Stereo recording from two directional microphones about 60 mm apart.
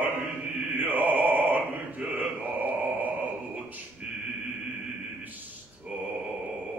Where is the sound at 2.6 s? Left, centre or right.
Right.